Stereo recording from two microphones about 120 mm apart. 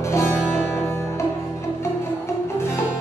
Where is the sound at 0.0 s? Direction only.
20° left (ahead or behind).